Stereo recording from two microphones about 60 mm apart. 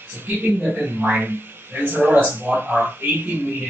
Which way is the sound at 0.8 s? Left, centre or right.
Right.